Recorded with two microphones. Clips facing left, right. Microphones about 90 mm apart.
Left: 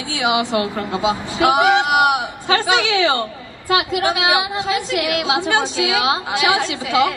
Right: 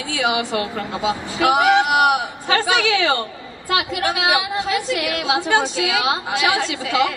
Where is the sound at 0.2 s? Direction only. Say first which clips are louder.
Left 3 dB; 20° left (ahead or behind).